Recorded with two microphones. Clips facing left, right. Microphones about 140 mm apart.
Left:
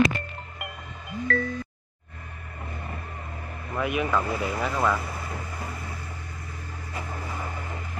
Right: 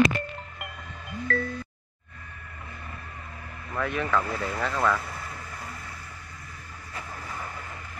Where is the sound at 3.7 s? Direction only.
15° left (ahead or behind).